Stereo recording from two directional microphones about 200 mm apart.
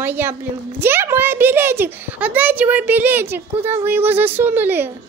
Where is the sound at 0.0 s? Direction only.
10° right (ahead or behind).